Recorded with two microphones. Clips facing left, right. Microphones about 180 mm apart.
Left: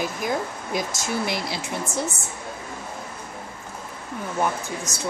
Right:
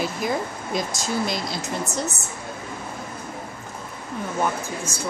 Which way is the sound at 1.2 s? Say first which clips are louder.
Right 1 dB; 60° left (ahead or behind).